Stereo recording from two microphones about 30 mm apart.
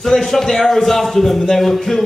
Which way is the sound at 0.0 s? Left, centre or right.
Centre.